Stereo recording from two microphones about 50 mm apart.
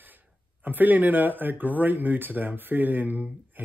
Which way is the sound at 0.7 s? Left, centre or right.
Right.